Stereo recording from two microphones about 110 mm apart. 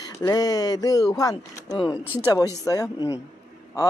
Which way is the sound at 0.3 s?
35° left (ahead or behind).